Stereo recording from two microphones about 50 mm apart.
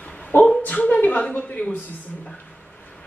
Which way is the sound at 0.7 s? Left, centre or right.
Left.